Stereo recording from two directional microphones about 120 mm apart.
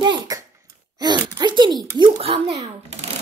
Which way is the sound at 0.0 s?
40° right (ahead or behind).